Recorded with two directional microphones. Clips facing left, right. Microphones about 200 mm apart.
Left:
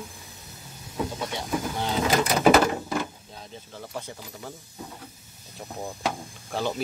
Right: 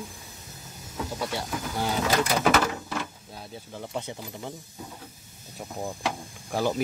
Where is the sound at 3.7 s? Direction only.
15° right (ahead or behind).